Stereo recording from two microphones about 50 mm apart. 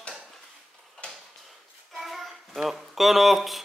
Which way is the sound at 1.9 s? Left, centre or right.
Centre.